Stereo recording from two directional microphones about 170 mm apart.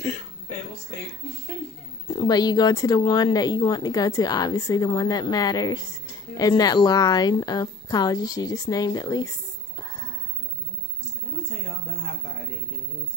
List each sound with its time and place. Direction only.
0.0 s speech: 15° left (ahead or behind)
2.0 s speech: 25° left (ahead or behind)
9.8 s a sound: 25° left (ahead or behind)